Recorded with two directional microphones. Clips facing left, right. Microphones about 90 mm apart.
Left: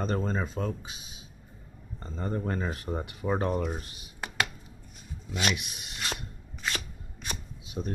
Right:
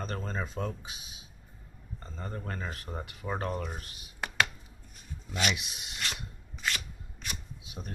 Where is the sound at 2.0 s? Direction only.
15° left (ahead or behind).